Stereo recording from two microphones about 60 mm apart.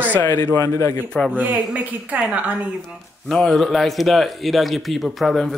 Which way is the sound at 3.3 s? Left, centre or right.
Centre.